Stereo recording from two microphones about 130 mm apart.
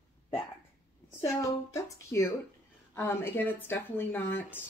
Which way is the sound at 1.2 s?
20° left (ahead or behind).